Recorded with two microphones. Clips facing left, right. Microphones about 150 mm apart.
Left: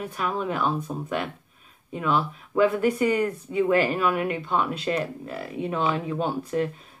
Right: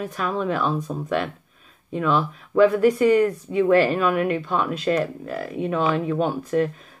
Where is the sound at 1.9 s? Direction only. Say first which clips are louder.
Right 3 dB; 15° left (ahead or behind).